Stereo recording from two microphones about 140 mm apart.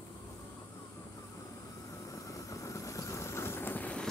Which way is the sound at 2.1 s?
25° left (ahead or behind).